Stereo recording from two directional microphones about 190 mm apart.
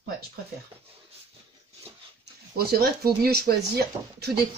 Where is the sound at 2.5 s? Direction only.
55° right (ahead or behind).